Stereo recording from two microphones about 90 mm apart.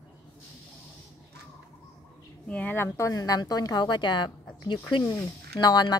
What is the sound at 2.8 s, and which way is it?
A woman's voice, 35° left (ahead or behind).